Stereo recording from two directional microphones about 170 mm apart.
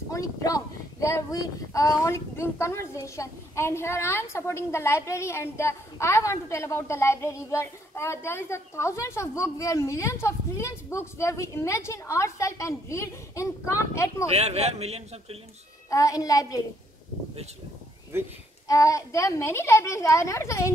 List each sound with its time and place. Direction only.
0.1 s speech: 20° left (ahead or behind)
14.3 s speech: 40° right (ahead or behind)
15.9 s a child's voice: 20° left (ahead or behind)
18.7 s speech: 20° left (ahead or behind)